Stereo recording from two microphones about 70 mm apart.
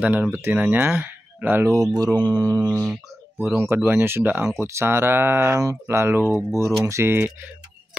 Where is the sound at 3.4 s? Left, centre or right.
Right.